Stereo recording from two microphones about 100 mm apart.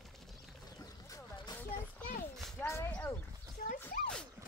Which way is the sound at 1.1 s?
40° left (ahead or behind).